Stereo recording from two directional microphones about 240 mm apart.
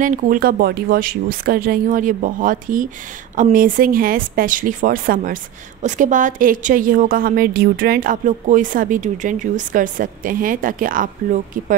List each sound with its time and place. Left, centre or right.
0.0 s speech: right